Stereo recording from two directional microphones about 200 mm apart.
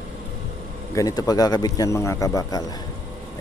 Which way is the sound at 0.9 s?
15° left (ahead or behind).